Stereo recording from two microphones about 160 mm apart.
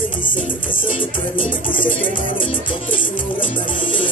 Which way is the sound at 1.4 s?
60° left (ahead or behind).